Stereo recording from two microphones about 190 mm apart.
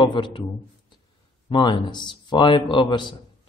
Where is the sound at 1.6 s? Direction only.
25° left (ahead or behind).